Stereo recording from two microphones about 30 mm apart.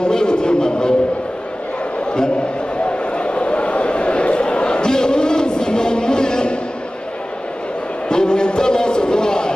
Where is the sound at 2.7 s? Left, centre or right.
Left.